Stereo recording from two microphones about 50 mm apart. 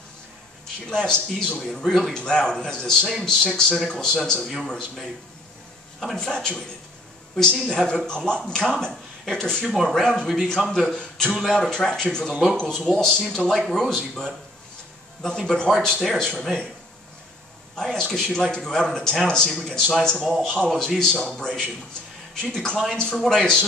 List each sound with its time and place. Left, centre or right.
0.8 s speech: centre
6.1 s speech: centre
7.6 s speech: centre
10.2 s a man's voice: centre
10.7 s speech: centre
17.7 s speech: centre